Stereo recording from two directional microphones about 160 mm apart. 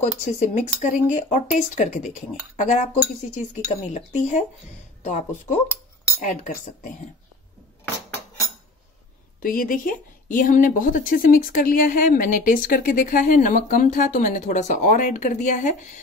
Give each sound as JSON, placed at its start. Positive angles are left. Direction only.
{"t": 0.2, "sound": "speech", "side_deg": 50}
{"t": 9.4, "sound": "speech", "side_deg": 60}